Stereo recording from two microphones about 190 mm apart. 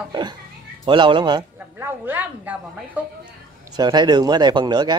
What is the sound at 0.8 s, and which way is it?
Speech, 25° right (ahead or behind).